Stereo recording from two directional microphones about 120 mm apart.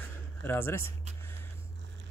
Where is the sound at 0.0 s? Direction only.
20° left (ahead or behind).